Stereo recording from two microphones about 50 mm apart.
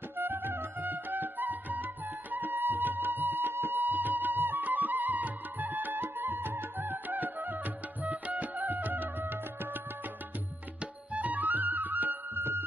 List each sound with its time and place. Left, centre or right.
0.2 s music: right
10.8 s music: right